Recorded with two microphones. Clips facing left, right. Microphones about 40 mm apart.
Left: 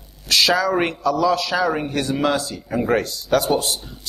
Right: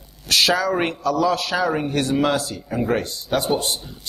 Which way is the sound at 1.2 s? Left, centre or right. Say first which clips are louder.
Left 2 dB; right.